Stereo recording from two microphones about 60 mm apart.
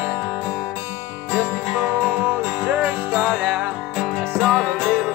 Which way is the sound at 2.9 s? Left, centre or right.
Right.